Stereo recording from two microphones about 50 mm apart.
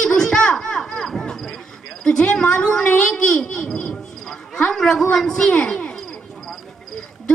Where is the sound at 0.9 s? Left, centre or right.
Centre.